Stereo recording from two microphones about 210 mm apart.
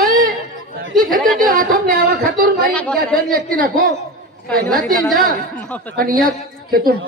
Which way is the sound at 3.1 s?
45° right (ahead or behind).